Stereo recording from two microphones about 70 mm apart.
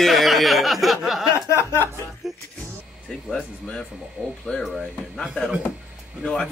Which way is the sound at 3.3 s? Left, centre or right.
Centre.